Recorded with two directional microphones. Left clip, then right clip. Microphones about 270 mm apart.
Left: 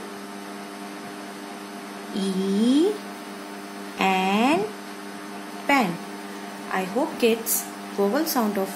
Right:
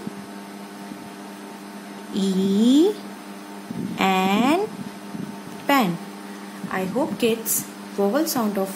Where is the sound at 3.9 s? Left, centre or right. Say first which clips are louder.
Right 1 dB; centre.